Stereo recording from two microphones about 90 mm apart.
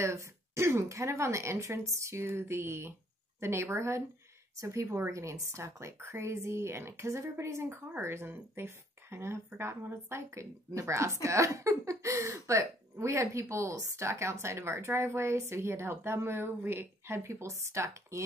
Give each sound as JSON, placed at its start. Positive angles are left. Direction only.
{"t": 0.0, "sound": "speech", "side_deg": -30}